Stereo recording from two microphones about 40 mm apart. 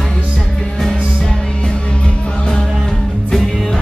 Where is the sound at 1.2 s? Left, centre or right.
Left.